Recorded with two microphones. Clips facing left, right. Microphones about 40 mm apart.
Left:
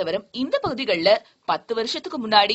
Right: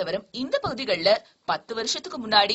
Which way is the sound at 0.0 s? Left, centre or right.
Centre.